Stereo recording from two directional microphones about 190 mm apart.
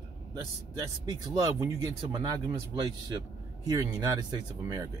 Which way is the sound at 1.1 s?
20° right (ahead or behind).